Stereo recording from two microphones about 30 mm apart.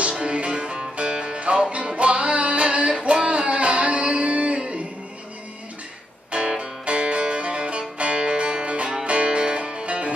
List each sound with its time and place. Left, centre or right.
0.2 s music: right
6.6 s music: right